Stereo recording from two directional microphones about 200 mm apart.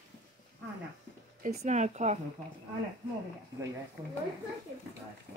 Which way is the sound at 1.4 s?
35° right (ahead or behind).